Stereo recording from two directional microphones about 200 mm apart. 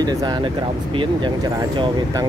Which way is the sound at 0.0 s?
20° right (ahead or behind).